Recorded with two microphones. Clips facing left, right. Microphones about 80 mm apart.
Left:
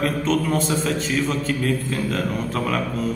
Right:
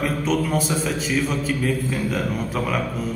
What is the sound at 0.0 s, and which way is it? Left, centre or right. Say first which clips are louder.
A man's voice: left 1 dB; centre.